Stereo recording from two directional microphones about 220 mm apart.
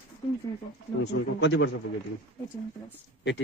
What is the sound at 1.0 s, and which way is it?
Speech, 50° left (ahead or behind).